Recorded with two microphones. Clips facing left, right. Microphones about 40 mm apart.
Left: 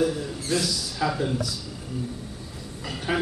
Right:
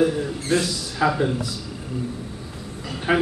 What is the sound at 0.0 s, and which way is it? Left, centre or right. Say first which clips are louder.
A man's voice: right 4 dB; right.